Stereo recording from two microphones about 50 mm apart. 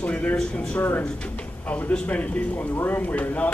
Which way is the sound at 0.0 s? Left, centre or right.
Left.